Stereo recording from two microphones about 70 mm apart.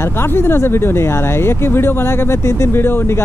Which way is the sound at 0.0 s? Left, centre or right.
Left.